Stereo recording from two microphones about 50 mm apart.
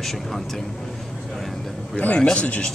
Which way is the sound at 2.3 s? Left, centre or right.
Left.